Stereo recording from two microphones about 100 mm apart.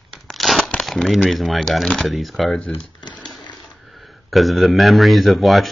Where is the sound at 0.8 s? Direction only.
Centre (ahead or behind).